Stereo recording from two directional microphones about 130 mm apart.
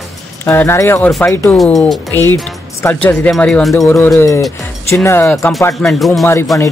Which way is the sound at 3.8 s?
25° left (ahead or behind).